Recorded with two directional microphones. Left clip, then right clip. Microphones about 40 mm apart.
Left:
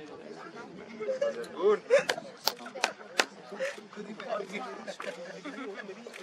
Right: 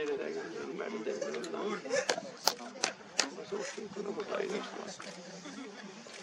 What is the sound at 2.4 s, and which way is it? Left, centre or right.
Shuffling cards, left.